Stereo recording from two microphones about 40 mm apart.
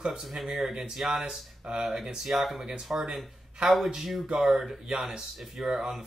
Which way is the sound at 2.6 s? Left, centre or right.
Centre.